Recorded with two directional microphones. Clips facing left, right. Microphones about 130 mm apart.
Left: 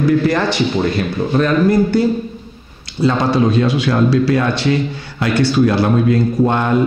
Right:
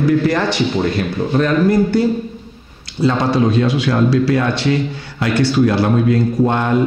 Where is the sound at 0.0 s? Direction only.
20° left (ahead or behind).